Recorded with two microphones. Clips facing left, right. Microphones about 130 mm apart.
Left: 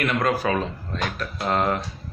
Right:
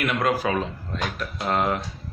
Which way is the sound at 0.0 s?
10° right (ahead or behind).